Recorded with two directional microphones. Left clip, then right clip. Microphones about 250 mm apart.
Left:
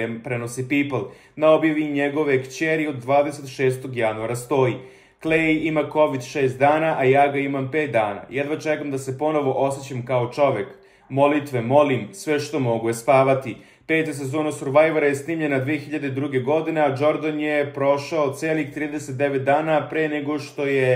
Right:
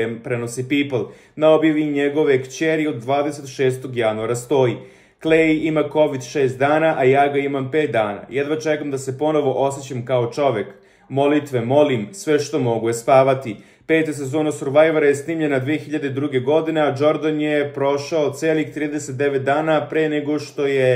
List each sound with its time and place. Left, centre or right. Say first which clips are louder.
0.3 s speech: right 3 dB; centre